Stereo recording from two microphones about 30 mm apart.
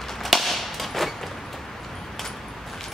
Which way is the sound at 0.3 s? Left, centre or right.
Centre.